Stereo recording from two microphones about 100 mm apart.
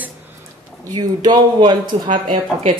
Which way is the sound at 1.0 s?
45° right (ahead or behind).